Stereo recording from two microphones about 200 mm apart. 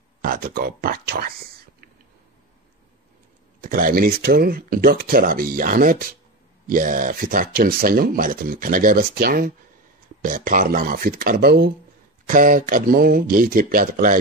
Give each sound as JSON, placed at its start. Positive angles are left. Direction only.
{"t": 0.2, "sound": "speech", "side_deg": -45}
{"t": 3.6, "sound": "speech", "side_deg": -40}